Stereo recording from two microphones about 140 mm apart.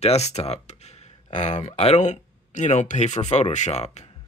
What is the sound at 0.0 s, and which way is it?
Speech, 50° left (ahead or behind).